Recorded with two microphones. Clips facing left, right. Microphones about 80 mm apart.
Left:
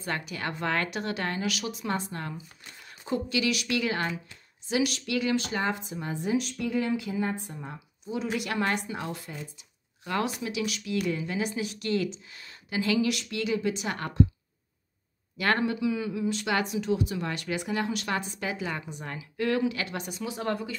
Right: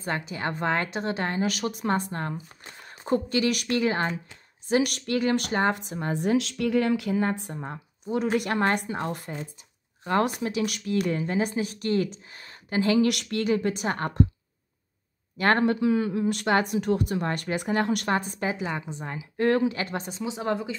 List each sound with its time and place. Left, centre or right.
0.0 s a woman's voice: right
1.5 s a woman's voice: right
6.1 s a woman's voice: right
7.5 s speech: right
13.0 s a woman's voice: right
13.4 s speech: right
15.3 s speech: right
18.0 s a woman's voice: right
19.3 s speech: right; by 20.7 s centre